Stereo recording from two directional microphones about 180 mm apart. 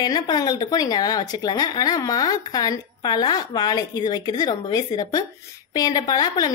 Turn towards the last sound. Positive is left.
turn(degrees=20)  # may be behind; listen again after turning